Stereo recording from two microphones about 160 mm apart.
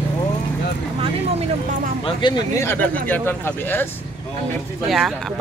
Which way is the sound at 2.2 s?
30° left (ahead or behind).